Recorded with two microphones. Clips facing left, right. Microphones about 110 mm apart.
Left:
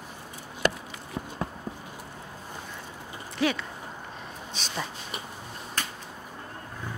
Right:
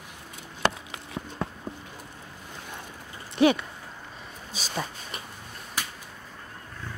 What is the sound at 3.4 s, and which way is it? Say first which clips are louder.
Speech: right 6 dB; 20° right (ahead or behind).